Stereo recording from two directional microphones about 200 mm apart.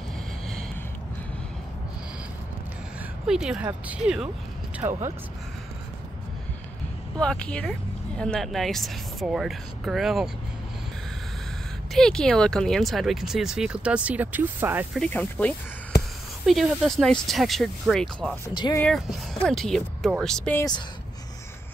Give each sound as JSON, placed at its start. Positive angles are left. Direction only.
{"t": 3.3, "sound": "speech", "side_deg": -5}
{"t": 7.2, "sound": "speech", "side_deg": 5}
{"t": 11.9, "sound": "speech", "side_deg": 5}
{"t": 15.0, "sound": "speech", "side_deg": 5}
{"t": 18.5, "sound": "speech", "side_deg": 20}
{"t": 18.8, "sound": "speech", "side_deg": 5}